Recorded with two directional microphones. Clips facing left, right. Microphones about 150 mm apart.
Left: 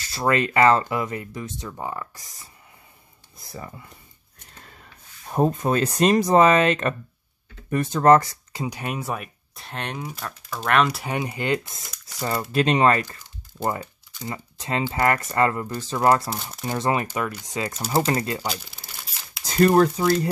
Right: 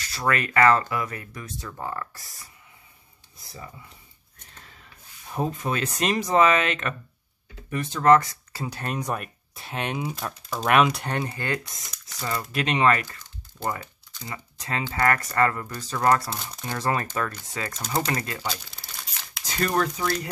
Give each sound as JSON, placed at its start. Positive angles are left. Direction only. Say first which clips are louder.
{"t": 0.0, "sound": "speech", "louder": "left 4 dB", "side_deg": 30}
{"t": 5.3, "sound": "speech", "louder": "left 6 dB", "side_deg": 40}
{"t": 8.5, "sound": "speech", "louder": "left 2 dB", "side_deg": 15}
{"t": 10.9, "sound": "speech", "louder": "left 1 dB", "side_deg": 5}
{"t": 12.2, "sound": "speech", "louder": "left 5 dB", "side_deg": 30}
{"t": 13.5, "sound": "speech", "louder": "left 4 dB", "side_deg": 10}
{"t": 14.3, "sound": "speech", "louder": "left 4 dB", "side_deg": 25}
{"t": 17.9, "sound": "speech", "louder": "left 5 dB", "side_deg": 30}
{"t": 19.4, "sound": "speech", "louder": "left 8 dB", "side_deg": 40}